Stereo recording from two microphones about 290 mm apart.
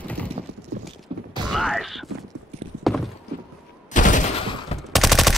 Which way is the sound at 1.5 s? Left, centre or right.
Centre.